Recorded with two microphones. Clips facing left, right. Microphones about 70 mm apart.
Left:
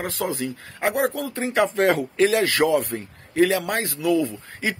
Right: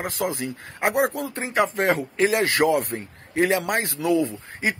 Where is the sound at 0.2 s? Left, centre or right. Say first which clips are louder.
Even; right.